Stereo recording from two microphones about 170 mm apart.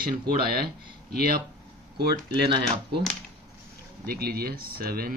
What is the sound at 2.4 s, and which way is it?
Speech, 30° right (ahead or behind).